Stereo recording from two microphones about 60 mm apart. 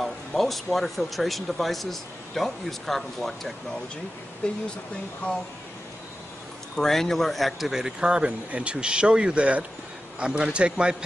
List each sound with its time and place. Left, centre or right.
0.0 s speech: centre
4.4 s speech: centre
6.8 s a man's voice: centre